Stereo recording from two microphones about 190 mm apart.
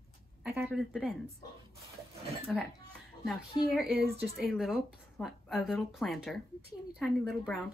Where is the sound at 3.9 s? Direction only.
55° right (ahead or behind).